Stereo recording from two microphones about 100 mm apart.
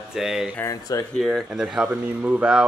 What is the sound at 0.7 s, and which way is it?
Speech, 35° left (ahead or behind).